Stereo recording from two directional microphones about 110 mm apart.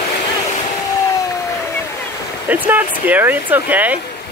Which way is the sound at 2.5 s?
15° right (ahead or behind).